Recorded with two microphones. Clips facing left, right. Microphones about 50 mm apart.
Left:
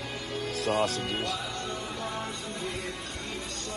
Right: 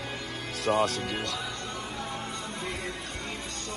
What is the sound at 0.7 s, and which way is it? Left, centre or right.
Speech, right.